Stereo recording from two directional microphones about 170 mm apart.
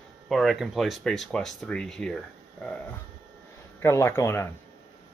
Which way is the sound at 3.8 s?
15° left (ahead or behind).